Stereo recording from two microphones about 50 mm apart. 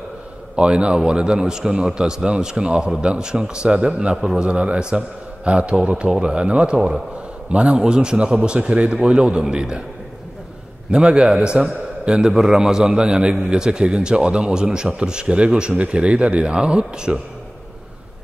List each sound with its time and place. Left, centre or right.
0.6 s a man's voice: right
4.2 s a man's voice: centre
4.5 s a man's voice: right
10.9 s a man's voice: centre